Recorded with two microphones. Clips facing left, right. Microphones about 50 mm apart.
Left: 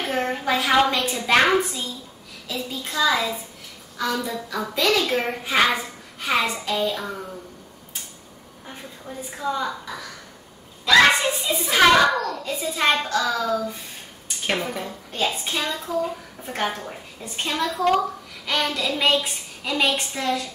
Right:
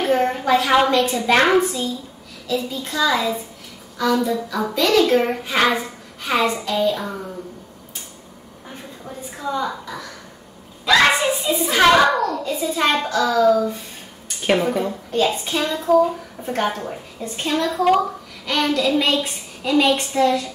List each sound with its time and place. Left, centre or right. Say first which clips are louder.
0.0 s a child's voice: right 6 dB; centre
9.4 s a child's voice: right 2 dB; centre